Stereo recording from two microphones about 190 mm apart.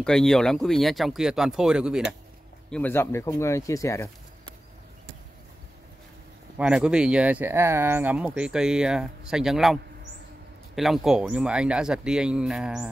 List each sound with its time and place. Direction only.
0.0 s speech: 5° left (ahead or behind)
2.7 s speech: 10° left (ahead or behind)
6.6 s speech: 5° right (ahead or behind)
10.8 s speech: centre (ahead or behind)